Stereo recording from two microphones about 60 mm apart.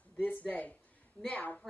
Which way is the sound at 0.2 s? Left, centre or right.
Left.